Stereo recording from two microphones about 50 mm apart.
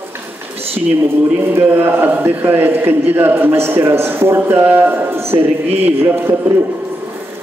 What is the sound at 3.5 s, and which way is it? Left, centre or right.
A man's voice, right.